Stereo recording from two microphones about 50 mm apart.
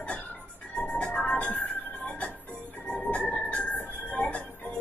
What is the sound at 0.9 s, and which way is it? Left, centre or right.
Music, left.